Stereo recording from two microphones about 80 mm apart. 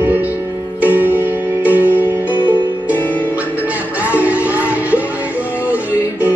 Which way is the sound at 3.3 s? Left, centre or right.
Centre.